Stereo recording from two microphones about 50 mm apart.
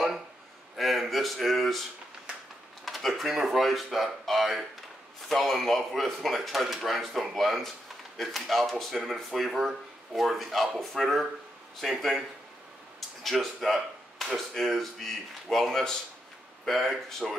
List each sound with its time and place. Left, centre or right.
0.7 s speech: centre
16.6 s speech: centre